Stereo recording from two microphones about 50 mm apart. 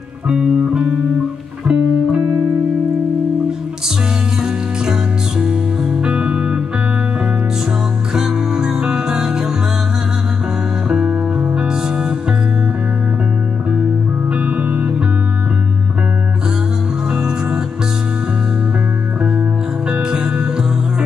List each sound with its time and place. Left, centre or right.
0.3 s music: centre
5.4 s music: centre
8.1 s music: centre
10.9 s music: centre
14.3 s music: right
17.1 s music: centre
19.9 s music: centre